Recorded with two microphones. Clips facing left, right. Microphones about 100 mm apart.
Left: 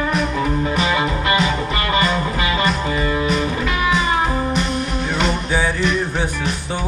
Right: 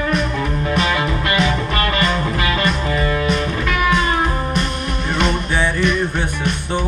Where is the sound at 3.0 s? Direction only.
20° left (ahead or behind).